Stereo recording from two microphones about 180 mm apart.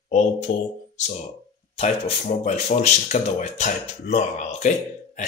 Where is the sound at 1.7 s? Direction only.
40° left (ahead or behind).